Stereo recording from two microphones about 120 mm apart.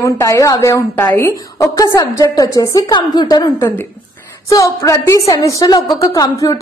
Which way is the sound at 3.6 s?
20° left (ahead or behind).